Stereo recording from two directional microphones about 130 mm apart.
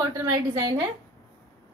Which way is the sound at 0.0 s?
25° right (ahead or behind).